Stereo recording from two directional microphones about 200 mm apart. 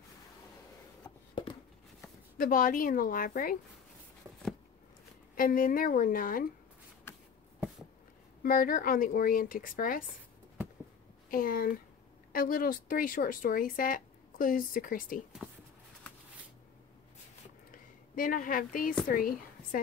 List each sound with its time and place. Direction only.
1.3 s a sound: 25° left (ahead or behind)
2.3 s speech: 45° left (ahead or behind)
5.3 s speech: 45° left (ahead or behind)
8.4 s speech: 45° left (ahead or behind)
11.2 s speech: 45° left (ahead or behind)
17.6 s a sound: 45° left (ahead or behind)
19.0 s a woman's voice: 45° left (ahead or behind)